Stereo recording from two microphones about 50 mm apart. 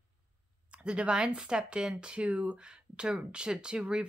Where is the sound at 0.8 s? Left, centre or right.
Right.